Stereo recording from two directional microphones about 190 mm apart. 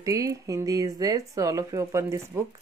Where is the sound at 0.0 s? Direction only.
15° right (ahead or behind).